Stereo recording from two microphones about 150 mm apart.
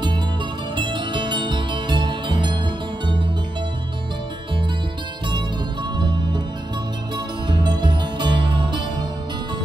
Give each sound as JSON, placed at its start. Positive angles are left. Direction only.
{"t": 0.7, "sound": "music", "side_deg": -30}
{"t": 5.9, "sound": "music", "side_deg": -30}
{"t": 7.4, "sound": "music", "side_deg": -30}